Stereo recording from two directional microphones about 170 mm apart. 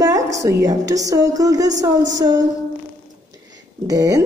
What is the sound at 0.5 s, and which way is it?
A woman's voice, 20° right (ahead or behind).